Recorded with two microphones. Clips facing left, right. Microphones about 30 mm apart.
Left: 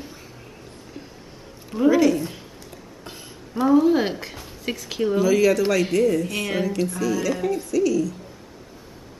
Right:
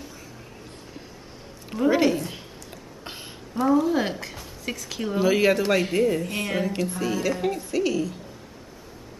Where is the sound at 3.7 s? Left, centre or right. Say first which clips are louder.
Left 5 dB; centre.